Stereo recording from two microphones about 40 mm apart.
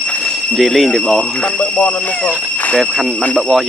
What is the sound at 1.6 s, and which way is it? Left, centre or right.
Music, left.